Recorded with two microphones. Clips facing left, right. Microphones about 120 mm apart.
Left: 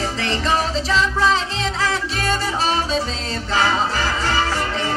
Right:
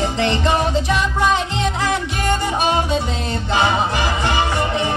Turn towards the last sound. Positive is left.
turn(degrees=-20)  # may be behind; listen again after turning